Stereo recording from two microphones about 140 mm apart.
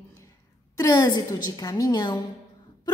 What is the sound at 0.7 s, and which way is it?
A woman's voice, 25° left (ahead or behind).